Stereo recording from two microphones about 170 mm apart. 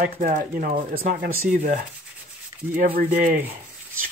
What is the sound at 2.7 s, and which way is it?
Speech, 60° right (ahead or behind).